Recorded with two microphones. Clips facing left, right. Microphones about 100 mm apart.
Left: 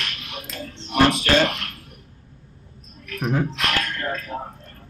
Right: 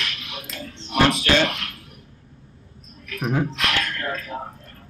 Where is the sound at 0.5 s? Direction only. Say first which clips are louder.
Left 1 dB; 35° left (ahead or behind).